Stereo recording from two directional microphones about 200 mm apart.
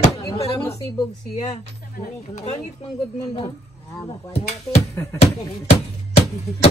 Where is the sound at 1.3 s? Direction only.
30° left (ahead or behind).